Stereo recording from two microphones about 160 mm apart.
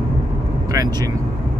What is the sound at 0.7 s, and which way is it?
Vehicle, 20° right (ahead or behind).